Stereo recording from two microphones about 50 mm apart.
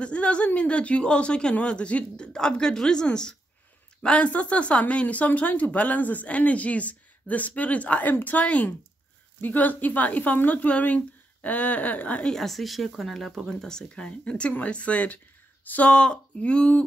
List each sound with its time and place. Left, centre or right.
0.0 s speech: left
12.3 s speech: centre; by 15.9 s left
15.9 s speech: centre